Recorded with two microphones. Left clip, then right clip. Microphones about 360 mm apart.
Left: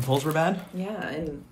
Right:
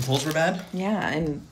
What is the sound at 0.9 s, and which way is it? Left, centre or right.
Speech, centre.